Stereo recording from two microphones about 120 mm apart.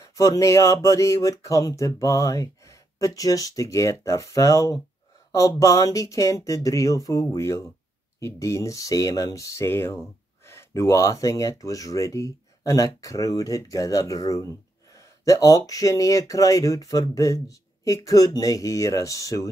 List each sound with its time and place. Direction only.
0.0 s speech: 30° left (ahead or behind)